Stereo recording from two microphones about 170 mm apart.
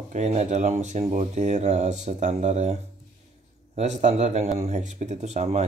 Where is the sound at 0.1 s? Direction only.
40° right (ahead or behind).